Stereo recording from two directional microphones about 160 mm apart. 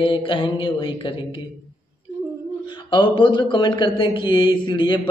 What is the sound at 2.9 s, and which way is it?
Speech, 30° left (ahead or behind).